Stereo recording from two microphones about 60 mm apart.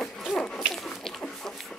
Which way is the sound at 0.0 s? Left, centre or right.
Centre.